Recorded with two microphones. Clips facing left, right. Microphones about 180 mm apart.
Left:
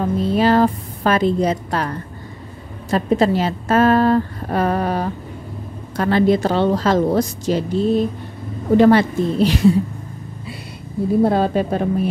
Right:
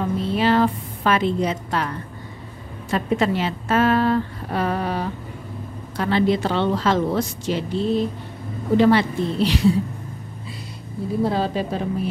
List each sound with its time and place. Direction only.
0.0 s a woman's voice: 40° left (ahead or behind)
11.2 s a woman's voice: 55° left (ahead or behind)